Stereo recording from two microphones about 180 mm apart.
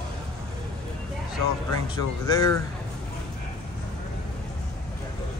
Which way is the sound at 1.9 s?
20° left (ahead or behind).